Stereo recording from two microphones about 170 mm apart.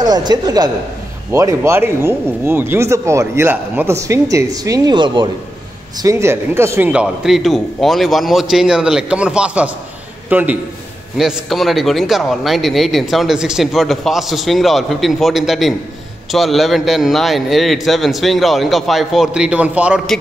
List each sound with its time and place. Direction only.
0.0 s a man's voice: 25° right (ahead or behind); by 20.2 s 5° right (ahead or behind)